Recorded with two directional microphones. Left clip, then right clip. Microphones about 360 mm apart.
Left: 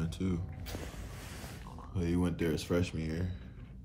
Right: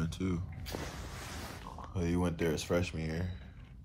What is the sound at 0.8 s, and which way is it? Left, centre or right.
Boat, centre.